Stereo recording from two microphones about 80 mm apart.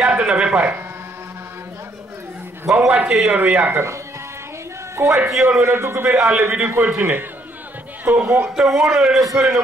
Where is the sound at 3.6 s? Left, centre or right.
Right.